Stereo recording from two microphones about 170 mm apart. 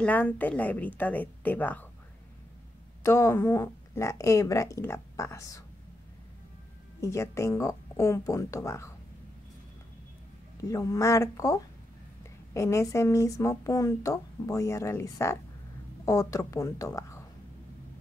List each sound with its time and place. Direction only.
0.0 s speech: 10° left (ahead or behind)
3.0 s speech: 15° left (ahead or behind)
7.0 s speech: 15° left (ahead or behind)
10.6 s a woman's voice: 20° left (ahead or behind)